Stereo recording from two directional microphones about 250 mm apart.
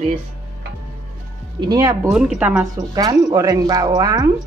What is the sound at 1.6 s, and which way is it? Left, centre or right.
Speech, centre.